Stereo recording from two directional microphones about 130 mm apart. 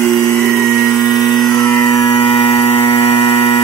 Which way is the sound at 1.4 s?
30° left (ahead or behind).